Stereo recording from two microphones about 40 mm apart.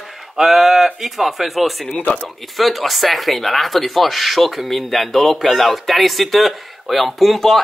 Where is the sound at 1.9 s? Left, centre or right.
Left.